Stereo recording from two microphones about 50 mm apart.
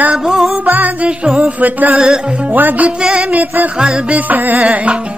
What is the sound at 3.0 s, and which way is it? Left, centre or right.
Music, centre.